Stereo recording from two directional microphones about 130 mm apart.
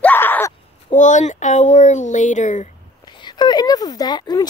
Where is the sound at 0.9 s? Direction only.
70° left (ahead or behind).